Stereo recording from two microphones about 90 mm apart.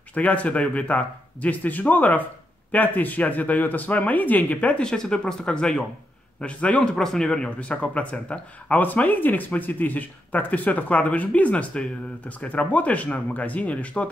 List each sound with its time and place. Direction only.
0.1 s speech: 15° left (ahead or behind)